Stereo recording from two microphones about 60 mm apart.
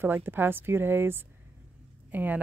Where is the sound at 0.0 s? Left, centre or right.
Right.